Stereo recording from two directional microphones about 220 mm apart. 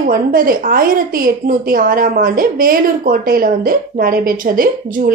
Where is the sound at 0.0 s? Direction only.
40° right (ahead or behind).